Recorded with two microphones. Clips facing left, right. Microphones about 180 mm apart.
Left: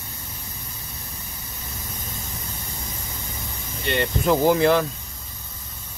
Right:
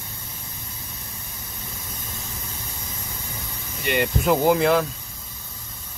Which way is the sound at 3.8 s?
10° right (ahead or behind).